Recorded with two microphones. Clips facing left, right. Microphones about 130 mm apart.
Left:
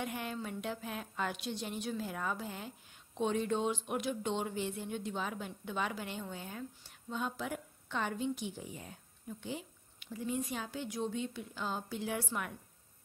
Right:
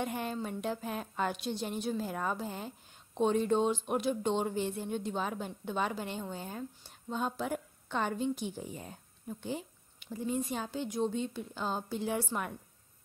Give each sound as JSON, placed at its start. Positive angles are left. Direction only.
{"t": 0.0, "sound": "a woman's voice", "side_deg": -35}